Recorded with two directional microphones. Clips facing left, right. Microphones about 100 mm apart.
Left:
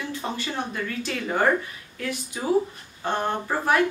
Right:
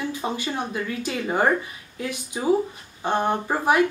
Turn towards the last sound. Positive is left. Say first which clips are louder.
# right 2 dB
turn(degrees=-20)  # may be behind; listen again after turning